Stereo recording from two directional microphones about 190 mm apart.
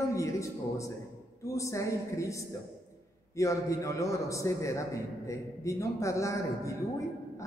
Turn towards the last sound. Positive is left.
turn(degrees=15)  # may be behind; listen again after turning